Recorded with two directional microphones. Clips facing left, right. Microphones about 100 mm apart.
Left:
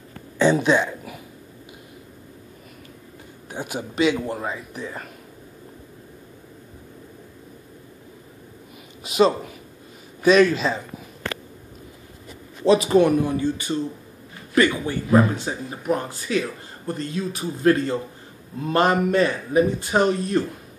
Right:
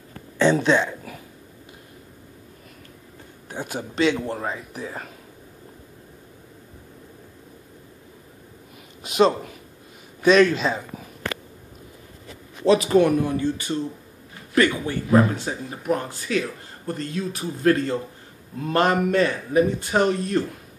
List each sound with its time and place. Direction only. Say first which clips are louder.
0.4 s speech: even; 10° left (ahead or behind)
3.4 s a man's voice: left 1 dB; 10° left (ahead or behind)
9.0 s a man's voice: even; centre (ahead or behind)
12.8 s a man's voice: left 1 dB; 15° left (ahead or behind)